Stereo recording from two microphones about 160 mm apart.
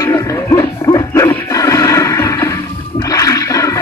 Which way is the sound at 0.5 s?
20° left (ahead or behind).